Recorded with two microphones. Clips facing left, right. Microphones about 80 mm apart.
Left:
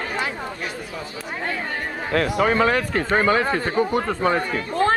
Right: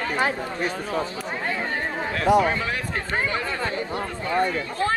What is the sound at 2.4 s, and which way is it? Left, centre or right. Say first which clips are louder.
Speech: left 6 dB; left.